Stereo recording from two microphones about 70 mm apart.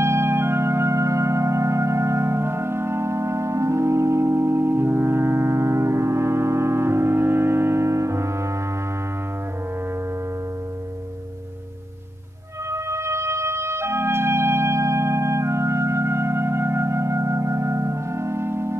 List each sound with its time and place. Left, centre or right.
0.0 s music: right
12.7 s organ: right